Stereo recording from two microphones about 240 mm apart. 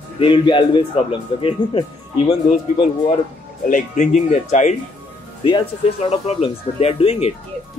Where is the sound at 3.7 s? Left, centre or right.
Left.